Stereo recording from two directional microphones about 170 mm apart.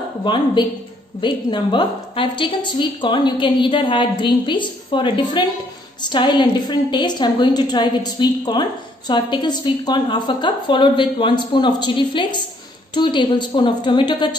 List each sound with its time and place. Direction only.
0.2 s a woman's voice: 25° left (ahead or behind)